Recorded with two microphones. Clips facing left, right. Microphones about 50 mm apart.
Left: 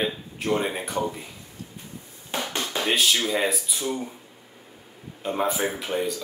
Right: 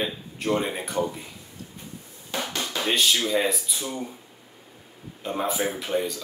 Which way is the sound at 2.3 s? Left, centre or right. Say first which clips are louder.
Left 1 dB; left.